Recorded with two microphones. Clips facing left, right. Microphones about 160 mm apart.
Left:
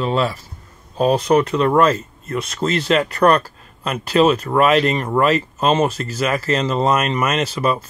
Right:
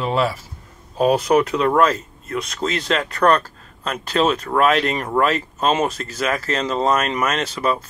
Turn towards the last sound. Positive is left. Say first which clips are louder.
# left 2 dB
turn(degrees=5)  # may be behind; listen again after turning